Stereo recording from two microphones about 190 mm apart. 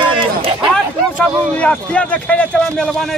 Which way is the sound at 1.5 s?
5° left (ahead or behind).